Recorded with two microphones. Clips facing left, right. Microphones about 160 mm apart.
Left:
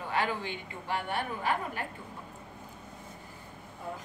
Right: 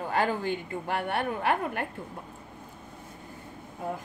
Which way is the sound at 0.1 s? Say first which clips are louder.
Right 4 dB; 45° right (ahead or behind).